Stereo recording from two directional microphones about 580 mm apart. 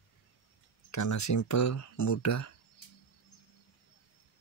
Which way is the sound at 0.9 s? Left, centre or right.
Left.